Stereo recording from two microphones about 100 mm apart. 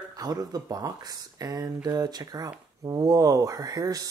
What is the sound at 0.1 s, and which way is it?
Speech, 40° right (ahead or behind).